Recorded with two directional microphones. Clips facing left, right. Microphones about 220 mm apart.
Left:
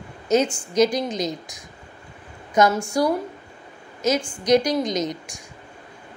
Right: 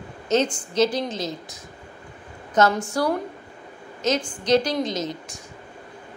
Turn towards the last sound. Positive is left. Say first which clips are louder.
# left 3 dB
turn(degrees=15)  # may be behind; listen again after turning